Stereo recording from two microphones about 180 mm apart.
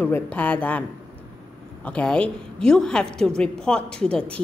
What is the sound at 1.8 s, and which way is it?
A woman's voice, 5° left (ahead or behind).